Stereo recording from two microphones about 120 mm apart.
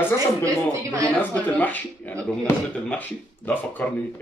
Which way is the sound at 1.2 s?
15° left (ahead or behind).